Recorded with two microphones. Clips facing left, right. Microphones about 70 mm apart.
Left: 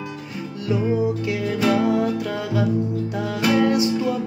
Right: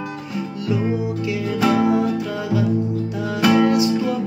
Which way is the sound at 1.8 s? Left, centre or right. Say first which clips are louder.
Right 2 dB; right.